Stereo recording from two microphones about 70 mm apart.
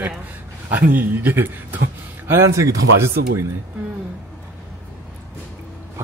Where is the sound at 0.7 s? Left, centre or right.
Right.